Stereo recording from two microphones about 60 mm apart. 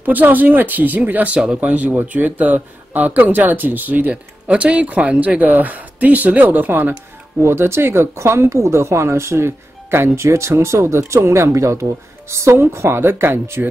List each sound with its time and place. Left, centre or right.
0.0 s speech: right
7.4 s speech: right
10.1 s speech: right